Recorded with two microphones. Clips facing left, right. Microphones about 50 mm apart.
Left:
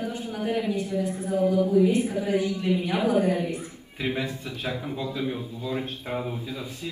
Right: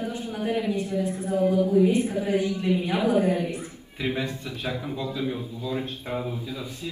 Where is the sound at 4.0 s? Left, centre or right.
Centre.